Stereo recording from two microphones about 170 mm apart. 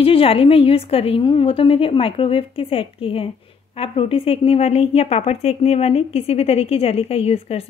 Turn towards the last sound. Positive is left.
turn(degrees=35)  # may be behind; listen again after turning